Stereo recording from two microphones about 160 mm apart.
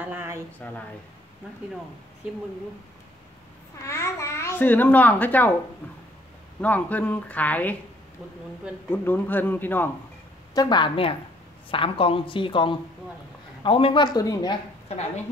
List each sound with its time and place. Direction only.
0.0 s a sound: 10° right (ahead or behind)
0.6 s speech: 10° left (ahead or behind)
3.7 s speech: 15° left (ahead or behind)
6.6 s speech: 10° left (ahead or behind)
8.9 s speech: 10° left (ahead or behind)
10.5 s a woman's voice: 25° left (ahead or behind)